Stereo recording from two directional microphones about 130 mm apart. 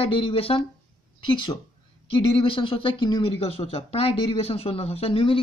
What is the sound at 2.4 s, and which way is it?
Speech, 40° left (ahead or behind).